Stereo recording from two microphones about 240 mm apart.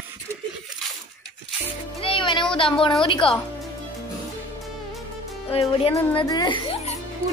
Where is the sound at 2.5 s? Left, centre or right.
Left.